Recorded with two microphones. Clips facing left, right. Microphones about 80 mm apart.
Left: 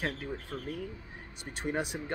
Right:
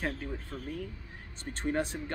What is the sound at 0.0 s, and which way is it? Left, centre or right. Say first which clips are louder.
Speech: even; centre.